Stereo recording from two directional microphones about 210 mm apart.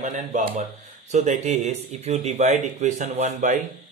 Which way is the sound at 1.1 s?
35° right (ahead or behind).